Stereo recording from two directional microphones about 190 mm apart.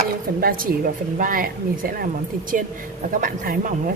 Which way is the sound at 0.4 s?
50° right (ahead or behind).